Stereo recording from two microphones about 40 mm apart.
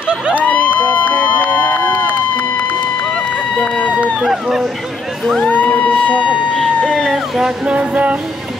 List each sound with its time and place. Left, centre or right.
1.1 s run: left
3.2 s run: left
4.2 s speech: centre
5.5 s music: left
6.5 s emergency vehicle: centre
7.0 s speech: centre
7.6 s music: right